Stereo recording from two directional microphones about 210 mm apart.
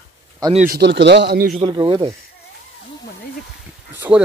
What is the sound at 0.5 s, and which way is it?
Speech, 45° right (ahead or behind).